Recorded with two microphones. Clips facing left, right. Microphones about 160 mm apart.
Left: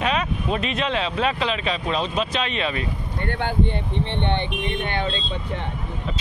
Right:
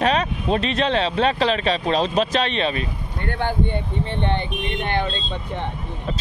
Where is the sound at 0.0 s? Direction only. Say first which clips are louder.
Right 3 dB; 35° right (ahead or behind).